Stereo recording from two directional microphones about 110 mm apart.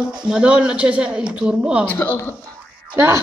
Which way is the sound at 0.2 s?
10° right (ahead or behind).